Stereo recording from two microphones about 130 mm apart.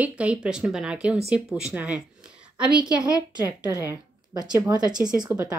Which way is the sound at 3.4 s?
20° right (ahead or behind).